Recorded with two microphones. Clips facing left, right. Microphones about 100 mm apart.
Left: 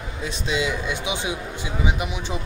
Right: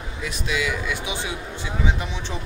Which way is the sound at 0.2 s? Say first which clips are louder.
Left 1 dB; 25° left (ahead or behind).